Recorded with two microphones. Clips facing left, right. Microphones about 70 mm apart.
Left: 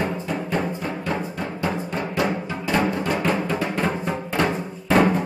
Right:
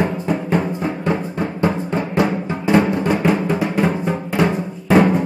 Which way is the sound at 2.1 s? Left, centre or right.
Right.